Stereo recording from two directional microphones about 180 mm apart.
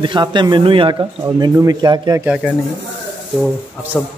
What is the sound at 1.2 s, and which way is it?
Speech, 15° right (ahead or behind).